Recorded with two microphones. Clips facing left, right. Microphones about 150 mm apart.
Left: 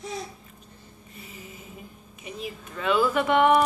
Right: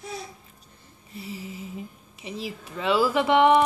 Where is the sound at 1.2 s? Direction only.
30° right (ahead or behind).